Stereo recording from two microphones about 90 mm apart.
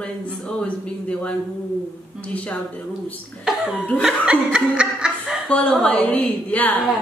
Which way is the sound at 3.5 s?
5° right (ahead or behind).